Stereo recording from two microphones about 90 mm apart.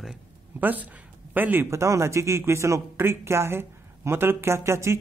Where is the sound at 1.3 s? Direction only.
20° right (ahead or behind).